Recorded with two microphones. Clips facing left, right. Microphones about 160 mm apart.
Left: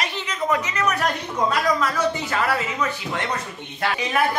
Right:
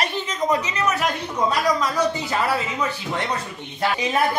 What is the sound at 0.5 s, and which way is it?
Speech, 30° right (ahead or behind).